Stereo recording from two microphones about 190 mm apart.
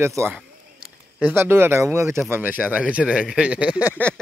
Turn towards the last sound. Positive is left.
turn(degrees=5)  # may be behind; listen again after turning